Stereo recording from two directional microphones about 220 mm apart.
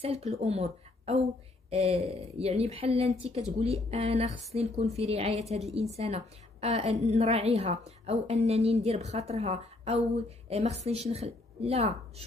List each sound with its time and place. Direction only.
0.0 s a woman's voice: 30° right (ahead or behind)